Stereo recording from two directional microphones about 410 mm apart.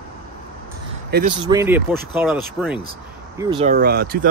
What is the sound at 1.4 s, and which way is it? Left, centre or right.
Speech, centre.